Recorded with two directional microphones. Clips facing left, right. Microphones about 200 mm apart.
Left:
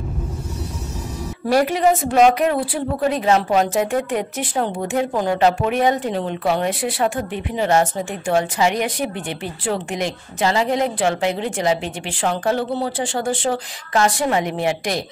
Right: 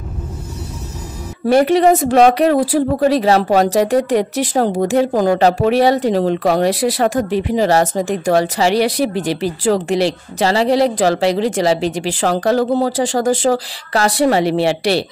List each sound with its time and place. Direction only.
1.5 s a woman's voice: 30° right (ahead or behind)